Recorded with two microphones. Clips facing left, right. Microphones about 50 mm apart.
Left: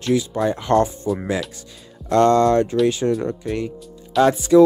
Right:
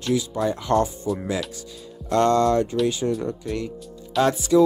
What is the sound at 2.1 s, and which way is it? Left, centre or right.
Speech, left.